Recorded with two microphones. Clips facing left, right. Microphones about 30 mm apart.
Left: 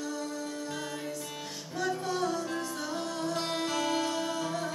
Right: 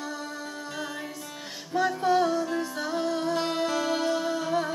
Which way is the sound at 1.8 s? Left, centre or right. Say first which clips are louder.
Right 8 dB; right.